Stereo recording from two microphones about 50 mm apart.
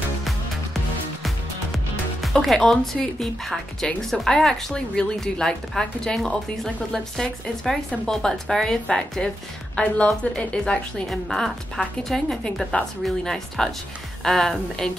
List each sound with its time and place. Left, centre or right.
2.2 s a woman's voice: centre
11.1 s speech: centre